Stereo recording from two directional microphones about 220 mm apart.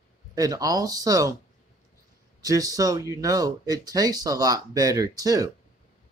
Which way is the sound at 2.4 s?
15° right (ahead or behind).